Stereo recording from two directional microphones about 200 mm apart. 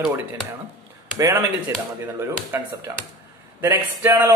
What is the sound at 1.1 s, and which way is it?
A man's voice, 15° right (ahead or behind).